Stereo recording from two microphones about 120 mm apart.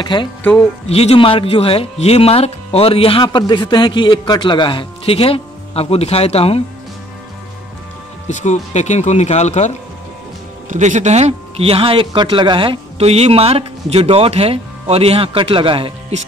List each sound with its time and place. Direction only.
0.0 s speech: 40° left (ahead or behind)
0.4 s speech: 10° left (ahead or behind)
0.8 s speech: 60° left (ahead or behind)
8.3 s speech: 85° left
10.7 s a man's voice: 90° right; by 15.9 s 45° right (ahead or behind)